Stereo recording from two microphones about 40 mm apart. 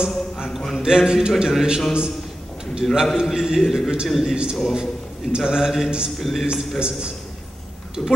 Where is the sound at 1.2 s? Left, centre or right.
Centre.